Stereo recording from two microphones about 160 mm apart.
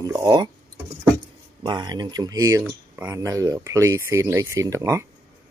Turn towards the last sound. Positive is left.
turn(degrees=-20)  # may be behind; listen again after turning